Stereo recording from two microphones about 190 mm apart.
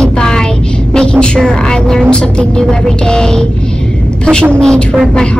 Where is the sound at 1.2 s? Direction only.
5° left (ahead or behind).